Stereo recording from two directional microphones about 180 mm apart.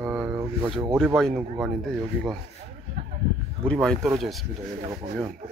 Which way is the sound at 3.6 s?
5° left (ahead or behind).